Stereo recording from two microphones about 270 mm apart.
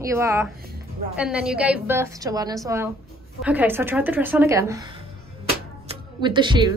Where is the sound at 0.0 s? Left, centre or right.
Centre.